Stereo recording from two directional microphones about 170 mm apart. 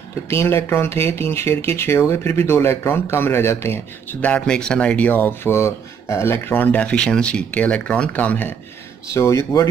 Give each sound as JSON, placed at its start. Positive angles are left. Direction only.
{"t": 0.3, "sound": "speech", "side_deg": 15}